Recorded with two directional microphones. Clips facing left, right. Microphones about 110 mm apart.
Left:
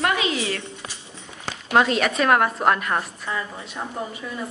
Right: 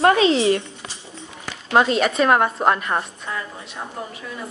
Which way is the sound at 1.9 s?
Centre (ahead or behind).